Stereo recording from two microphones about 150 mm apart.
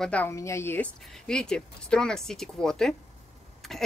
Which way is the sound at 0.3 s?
20° left (ahead or behind).